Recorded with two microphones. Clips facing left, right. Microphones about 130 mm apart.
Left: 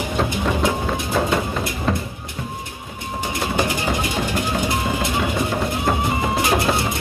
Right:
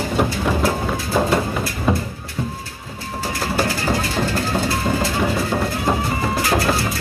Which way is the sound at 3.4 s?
20° left (ahead or behind).